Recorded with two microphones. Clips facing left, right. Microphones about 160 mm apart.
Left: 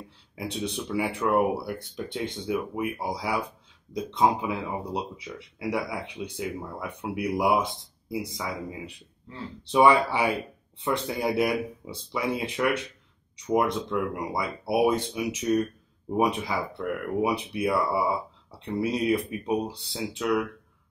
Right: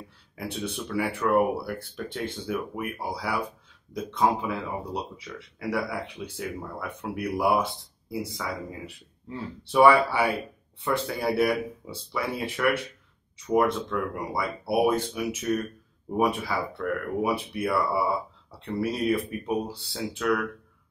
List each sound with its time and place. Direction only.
0.4 s speech: 20° left (ahead or behind)